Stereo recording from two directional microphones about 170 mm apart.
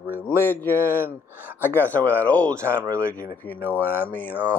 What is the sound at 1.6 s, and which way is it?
Speech, 10° left (ahead or behind).